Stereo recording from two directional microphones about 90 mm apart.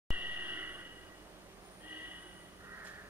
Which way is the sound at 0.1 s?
20° right (ahead or behind).